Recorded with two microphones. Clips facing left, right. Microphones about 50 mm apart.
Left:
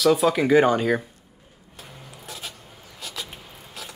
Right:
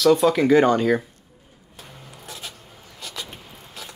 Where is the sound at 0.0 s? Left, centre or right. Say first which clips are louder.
Right 2 dB; centre.